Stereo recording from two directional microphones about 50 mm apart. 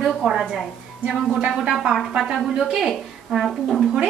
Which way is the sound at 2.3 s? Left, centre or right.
Centre.